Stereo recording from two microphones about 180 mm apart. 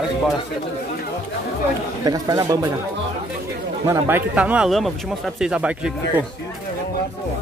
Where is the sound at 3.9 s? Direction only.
10° right (ahead or behind).